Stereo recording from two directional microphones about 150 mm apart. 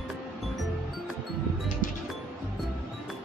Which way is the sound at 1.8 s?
65° left (ahead or behind).